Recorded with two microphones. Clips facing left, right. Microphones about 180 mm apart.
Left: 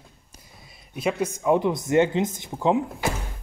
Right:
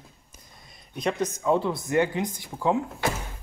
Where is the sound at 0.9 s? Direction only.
10° left (ahead or behind).